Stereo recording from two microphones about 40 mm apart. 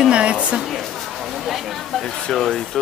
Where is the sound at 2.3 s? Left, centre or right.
Centre.